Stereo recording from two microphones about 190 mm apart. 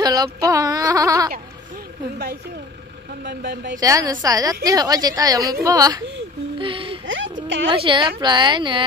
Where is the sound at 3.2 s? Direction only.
65° right (ahead or behind).